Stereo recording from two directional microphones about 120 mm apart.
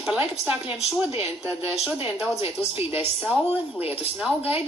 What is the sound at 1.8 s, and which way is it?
Speech, 10° right (ahead or behind).